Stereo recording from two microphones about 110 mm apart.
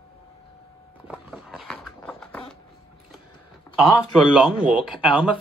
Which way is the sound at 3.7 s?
30° left (ahead or behind).